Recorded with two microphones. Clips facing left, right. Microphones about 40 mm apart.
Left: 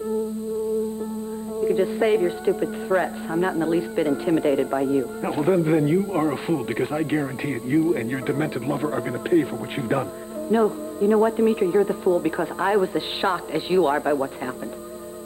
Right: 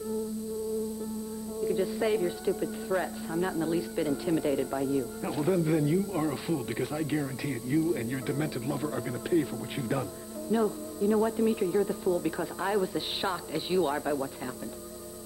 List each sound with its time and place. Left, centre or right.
1.6 s speech: left